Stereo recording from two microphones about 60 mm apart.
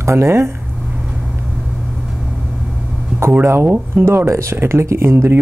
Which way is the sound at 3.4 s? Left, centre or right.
Right.